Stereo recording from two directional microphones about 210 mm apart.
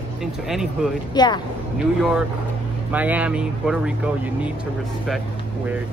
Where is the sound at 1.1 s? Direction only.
20° left (ahead or behind).